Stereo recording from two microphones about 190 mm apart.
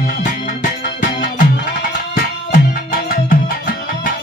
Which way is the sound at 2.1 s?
50° left (ahead or behind).